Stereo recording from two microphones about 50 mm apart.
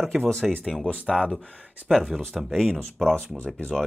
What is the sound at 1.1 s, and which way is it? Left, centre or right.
Speech, centre.